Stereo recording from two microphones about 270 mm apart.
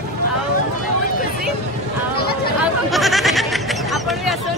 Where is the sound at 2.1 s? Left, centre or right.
Left.